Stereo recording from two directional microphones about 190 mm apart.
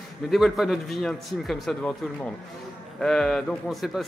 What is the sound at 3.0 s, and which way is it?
A man's voice, 5° left (ahead or behind).